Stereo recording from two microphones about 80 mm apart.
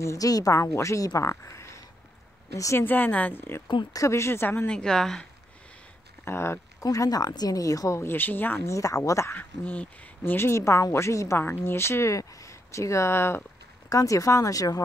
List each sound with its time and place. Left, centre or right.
0.0 s speech: left
2.8 s a woman's voice: left
3.9 s speech: left
4.6 s a woman's voice: centre
6.2 s speech: left
6.8 s a woman's voice: left
8.0 s a woman's voice: left
8.6 s speech: left
9.4 s speech: left
13.8 s a woman's voice: left